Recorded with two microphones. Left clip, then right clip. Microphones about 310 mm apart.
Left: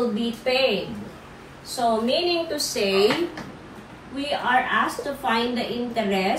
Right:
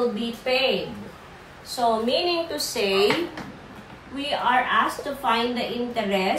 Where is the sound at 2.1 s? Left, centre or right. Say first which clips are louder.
Left 1 dB; centre.